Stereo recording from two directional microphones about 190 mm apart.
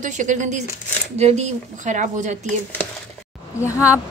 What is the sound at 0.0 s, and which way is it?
Speech, 40° right (ahead or behind).